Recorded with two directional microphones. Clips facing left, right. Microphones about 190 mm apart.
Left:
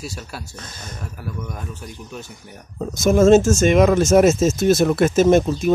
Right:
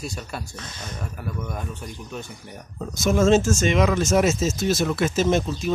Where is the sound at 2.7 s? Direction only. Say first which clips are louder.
Left 5 dB; 45° left (ahead or behind).